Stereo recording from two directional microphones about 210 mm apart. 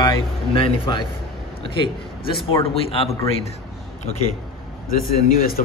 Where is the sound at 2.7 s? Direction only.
25° left (ahead or behind).